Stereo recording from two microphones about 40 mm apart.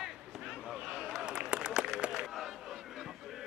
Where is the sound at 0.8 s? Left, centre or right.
Right.